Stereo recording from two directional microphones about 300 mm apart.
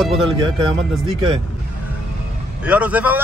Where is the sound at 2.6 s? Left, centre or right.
Centre.